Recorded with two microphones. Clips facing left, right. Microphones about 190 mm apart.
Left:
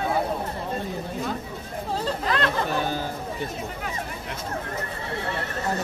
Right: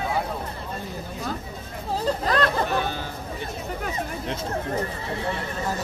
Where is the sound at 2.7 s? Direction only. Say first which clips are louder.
Even; 40° left (ahead or behind).